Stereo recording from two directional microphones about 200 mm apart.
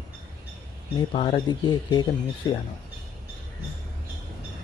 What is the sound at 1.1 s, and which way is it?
Speech, 25° left (ahead or behind).